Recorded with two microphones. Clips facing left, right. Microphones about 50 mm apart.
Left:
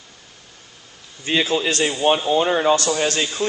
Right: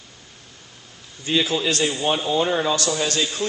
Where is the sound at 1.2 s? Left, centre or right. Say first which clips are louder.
Left 2 dB; left.